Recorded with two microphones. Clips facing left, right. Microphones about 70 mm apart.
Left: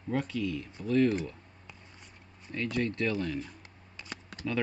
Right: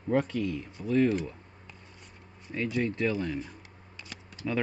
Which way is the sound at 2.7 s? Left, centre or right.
Centre.